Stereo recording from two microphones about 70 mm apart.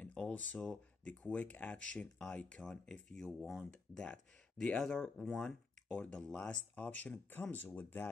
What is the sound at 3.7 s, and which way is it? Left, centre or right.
Speech, centre.